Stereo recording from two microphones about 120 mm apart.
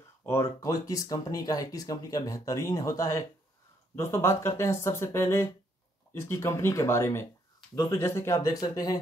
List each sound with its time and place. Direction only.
0.2 s speech: 20° left (ahead or behind)